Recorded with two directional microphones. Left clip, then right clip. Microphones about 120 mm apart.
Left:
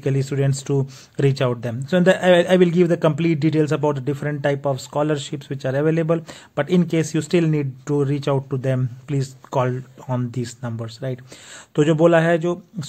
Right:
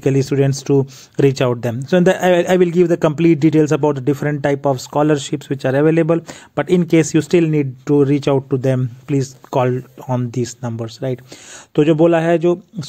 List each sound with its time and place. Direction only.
0.0 s speech: 40° right (ahead or behind)